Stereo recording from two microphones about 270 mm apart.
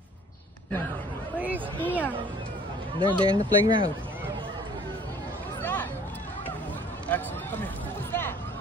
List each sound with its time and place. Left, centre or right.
1.9 s speech: centre
3.0 s speech: centre
5.6 s a sound: centre
7.1 s speech: centre